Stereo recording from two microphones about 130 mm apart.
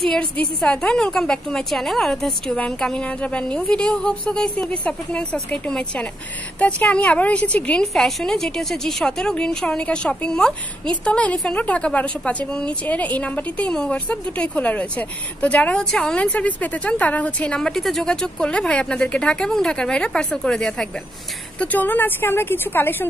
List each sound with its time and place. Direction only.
0.0 s a woman's voice: 5° left (ahead or behind)